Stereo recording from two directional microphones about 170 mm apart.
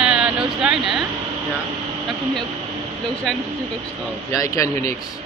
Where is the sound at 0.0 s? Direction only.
5° right (ahead or behind).